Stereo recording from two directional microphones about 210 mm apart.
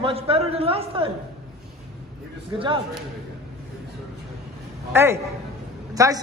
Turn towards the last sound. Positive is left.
turn(degrees=-15)  # may be behind; listen again after turning